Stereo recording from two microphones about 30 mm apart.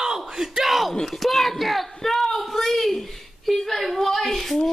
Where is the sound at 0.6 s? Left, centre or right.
Centre.